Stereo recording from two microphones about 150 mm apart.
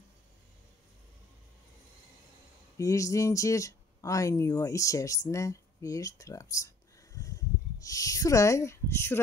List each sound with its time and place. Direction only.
2.8 s speech: 20° left (ahead or behind)